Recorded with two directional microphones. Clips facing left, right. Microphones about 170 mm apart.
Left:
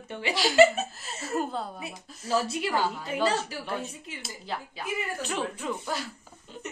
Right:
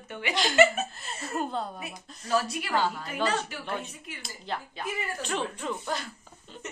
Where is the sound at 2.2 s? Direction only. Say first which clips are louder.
Left 1 dB; 25° left (ahead or behind).